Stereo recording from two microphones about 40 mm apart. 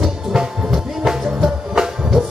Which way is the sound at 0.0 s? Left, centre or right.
Centre.